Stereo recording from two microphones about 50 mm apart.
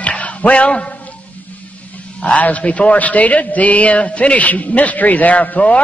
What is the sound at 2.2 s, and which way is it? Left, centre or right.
A man's voice, left.